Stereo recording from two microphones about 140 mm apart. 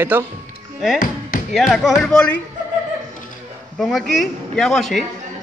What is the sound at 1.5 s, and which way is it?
Speech, centre (ahead or behind).